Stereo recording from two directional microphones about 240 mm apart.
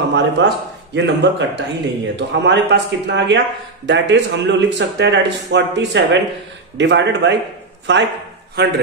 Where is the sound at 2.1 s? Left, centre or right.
Right.